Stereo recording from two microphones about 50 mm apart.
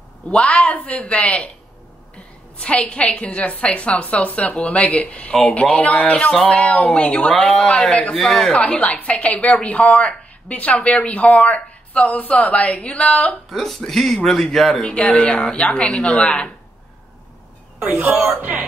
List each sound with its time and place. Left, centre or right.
0.3 s a woman's voice: left
2.5 s a woman's voice: left
6.1 s speech: centre
6.4 s a woman's voice: left
7.3 s a woman's voice: centre
8.2 s speech: centre
8.5 s a woman's voice: left
13.5 s speech: centre
14.8 s a woman's voice: left
18.4 s music: right